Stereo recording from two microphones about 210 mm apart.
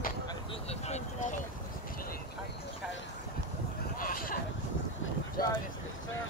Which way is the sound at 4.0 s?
40° left (ahead or behind).